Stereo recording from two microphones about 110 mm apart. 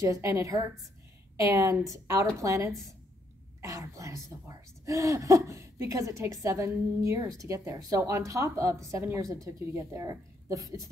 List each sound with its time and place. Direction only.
0.0 s a woman's voice: 25° right (ahead or behind)